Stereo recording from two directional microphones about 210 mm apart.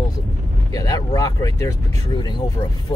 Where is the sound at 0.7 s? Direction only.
15° left (ahead or behind).